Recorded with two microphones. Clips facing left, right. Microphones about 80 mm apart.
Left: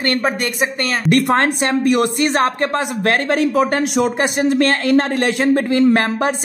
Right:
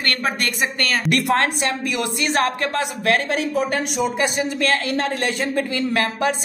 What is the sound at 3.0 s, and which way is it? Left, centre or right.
Speech, left.